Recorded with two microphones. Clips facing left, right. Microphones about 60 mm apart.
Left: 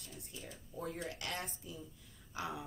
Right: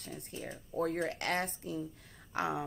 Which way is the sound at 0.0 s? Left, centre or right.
Right.